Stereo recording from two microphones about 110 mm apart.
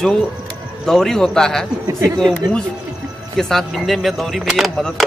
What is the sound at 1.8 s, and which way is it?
Speech, 30° right (ahead or behind).